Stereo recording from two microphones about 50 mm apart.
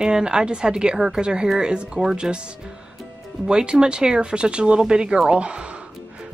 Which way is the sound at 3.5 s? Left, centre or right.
Centre.